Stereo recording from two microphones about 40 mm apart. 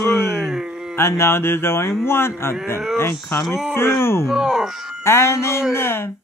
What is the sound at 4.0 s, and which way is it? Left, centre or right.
Cattle, left.